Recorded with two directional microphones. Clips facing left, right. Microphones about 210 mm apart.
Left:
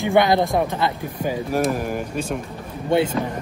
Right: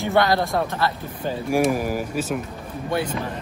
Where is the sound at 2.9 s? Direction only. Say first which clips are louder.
Left 6 dB; 25° left (ahead or behind).